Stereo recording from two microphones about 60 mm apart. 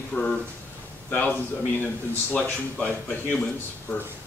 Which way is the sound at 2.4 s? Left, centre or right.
Centre.